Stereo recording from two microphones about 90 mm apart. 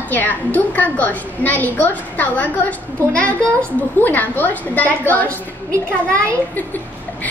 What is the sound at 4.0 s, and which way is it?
A woman's voice, 20° left (ahead or behind).